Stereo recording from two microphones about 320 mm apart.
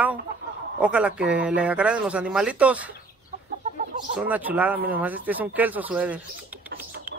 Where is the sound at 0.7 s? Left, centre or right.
Centre.